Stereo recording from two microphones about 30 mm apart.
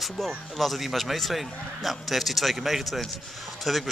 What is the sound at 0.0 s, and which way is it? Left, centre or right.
Speech, centre.